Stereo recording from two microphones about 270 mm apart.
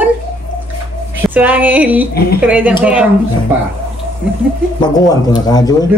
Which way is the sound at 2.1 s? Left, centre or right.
Left.